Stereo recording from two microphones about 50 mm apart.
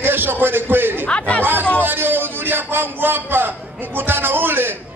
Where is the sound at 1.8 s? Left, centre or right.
Right.